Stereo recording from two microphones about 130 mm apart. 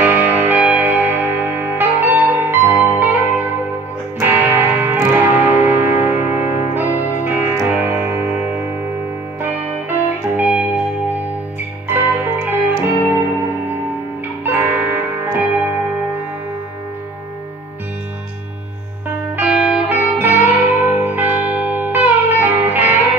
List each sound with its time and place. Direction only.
0.0 s music: 15° right (ahead or behind)
11.9 s music: 15° right (ahead or behind)
19.3 s music: 15° right (ahead or behind)